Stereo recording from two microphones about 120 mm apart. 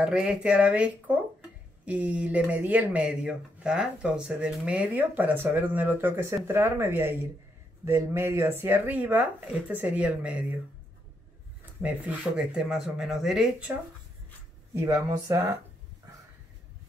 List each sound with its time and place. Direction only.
0.0 s speech: 10° right (ahead or behind)
11.8 s speech: 10° right (ahead or behind)
14.7 s speech: 25° right (ahead or behind)